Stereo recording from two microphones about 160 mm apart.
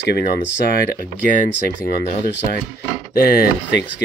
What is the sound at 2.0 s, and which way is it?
Speech, 75° left (ahead or behind).